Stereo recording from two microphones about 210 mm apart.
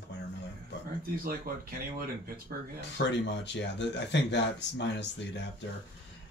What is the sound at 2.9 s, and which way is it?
Speech, 55° left (ahead or behind).